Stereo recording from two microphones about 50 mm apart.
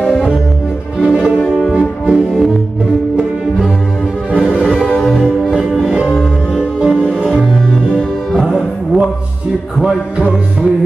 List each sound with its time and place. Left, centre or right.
1.0 s music: centre
4.6 s music: centre
4.9 s music: centre
5.5 s music: centre
6.5 s music: centre
8.4 s music: centre